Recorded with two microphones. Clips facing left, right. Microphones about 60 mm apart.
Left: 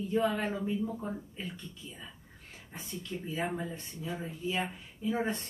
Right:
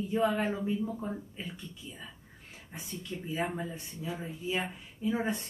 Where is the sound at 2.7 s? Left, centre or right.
Centre.